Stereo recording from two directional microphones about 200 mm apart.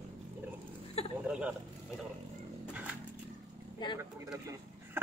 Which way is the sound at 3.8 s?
25° left (ahead or behind).